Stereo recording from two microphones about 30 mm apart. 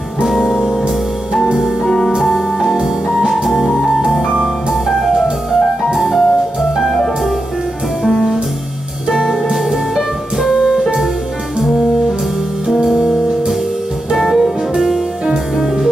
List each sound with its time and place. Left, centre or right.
0.2 s music: centre
1.9 s music: centre
2.3 s music: centre
5.9 s music: centre
9.1 s music: centre
12.8 s music: centre
14.1 s music: centre